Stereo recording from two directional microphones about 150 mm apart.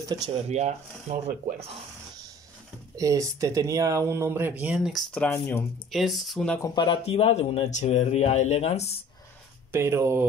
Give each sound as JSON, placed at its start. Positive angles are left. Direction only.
{"t": 0.5, "sound": "speech", "side_deg": -50}
{"t": 3.0, "sound": "speech", "side_deg": -20}
{"t": 5.1, "sound": "speech", "side_deg": 10}
{"t": 5.9, "sound": "speech", "side_deg": 0}
{"t": 6.6, "sound": "speech", "side_deg": 30}
{"t": 7.0, "sound": "speech", "side_deg": 45}
{"t": 9.7, "sound": "speech", "side_deg": -15}